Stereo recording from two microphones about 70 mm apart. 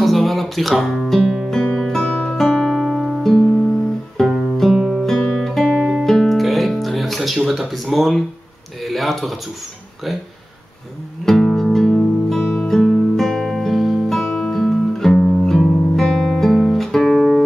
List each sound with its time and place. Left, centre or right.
0.0 s guitar: centre
1.5 s music: centre
1.8 s music: centre
2.0 s music: centre
2.3 s music: centre
5.4 s guitar: centre
8.8 s speech: centre
11.2 s music: centre